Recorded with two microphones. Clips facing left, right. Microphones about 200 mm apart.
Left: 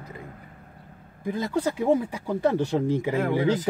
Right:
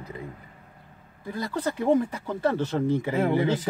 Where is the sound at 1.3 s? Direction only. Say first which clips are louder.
Left 3 dB; 15° left (ahead or behind).